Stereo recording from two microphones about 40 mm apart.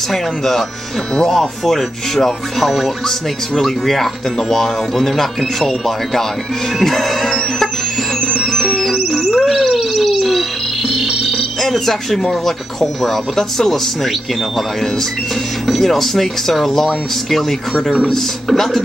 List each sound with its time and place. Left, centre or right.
0.1 s speech: centre
1.6 s speech: centre
8.2 s music: centre
15.6 s speech: centre